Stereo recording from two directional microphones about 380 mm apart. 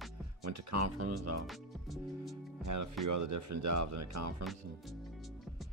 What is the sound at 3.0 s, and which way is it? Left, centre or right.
Speech, right.